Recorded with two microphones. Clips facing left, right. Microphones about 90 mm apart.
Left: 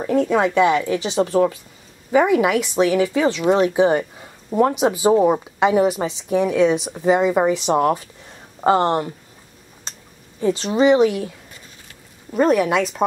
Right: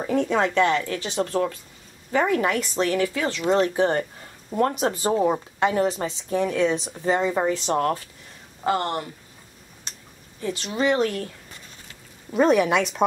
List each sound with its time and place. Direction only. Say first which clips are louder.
0.0 s speech: left 4 dB; centre (ahead or behind); by 8.0 s 20° left (ahead or behind)
8.6 s speech: left 8 dB; 30° left (ahead or behind)
10.4 s speech: left 8 dB; 30° left (ahead or behind)
10.9 s speech: left 6 dB; 10° left (ahead or behind)